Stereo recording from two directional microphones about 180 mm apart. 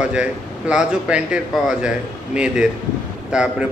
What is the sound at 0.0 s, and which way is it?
A man's voice, 5° right (ahead or behind).